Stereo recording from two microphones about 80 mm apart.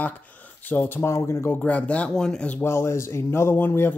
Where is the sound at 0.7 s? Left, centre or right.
Left.